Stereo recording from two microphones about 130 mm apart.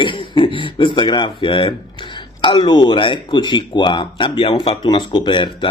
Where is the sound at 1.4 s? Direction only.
40° left (ahead or behind).